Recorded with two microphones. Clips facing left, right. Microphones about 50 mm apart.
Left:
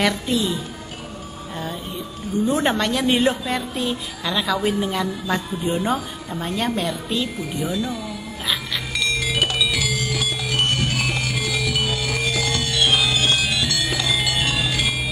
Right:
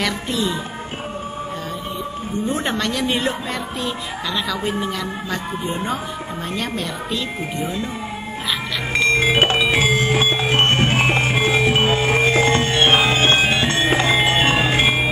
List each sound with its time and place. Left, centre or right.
0.0 s a woman's voice: centre
2.5 s a woman's voice: centre
5.9 s a woman's voice: centre
8.9 s music: right